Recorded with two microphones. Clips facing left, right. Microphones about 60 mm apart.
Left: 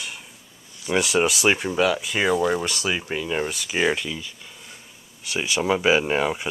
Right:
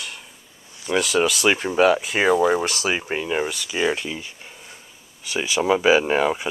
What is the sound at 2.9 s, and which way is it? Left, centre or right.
Speech, right.